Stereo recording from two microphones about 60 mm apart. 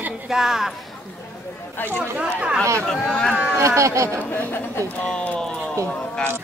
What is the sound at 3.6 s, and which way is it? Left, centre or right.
Speech, right.